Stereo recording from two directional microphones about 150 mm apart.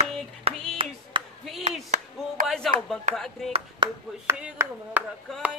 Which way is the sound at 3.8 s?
30° right (ahead or behind).